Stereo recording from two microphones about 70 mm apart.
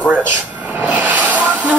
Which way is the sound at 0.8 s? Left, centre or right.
Right.